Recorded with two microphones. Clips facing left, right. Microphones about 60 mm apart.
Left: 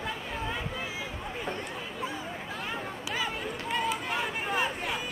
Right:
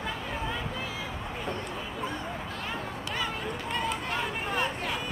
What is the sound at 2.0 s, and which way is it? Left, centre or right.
Run, centre.